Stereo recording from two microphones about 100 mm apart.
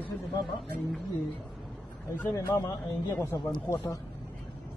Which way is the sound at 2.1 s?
25° left (ahead or behind).